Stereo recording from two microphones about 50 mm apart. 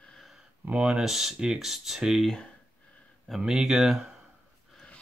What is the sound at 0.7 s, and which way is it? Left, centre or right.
Speech, right.